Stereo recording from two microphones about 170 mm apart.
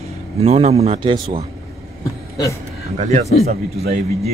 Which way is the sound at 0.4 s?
35° right (ahead or behind).